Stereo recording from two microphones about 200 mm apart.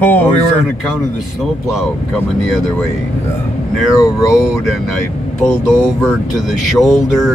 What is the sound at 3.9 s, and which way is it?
Speech, 15° left (ahead or behind).